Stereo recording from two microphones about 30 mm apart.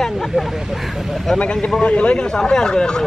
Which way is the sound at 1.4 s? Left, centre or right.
Left.